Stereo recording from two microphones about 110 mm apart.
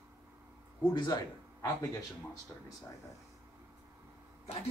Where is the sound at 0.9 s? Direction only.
40° left (ahead or behind).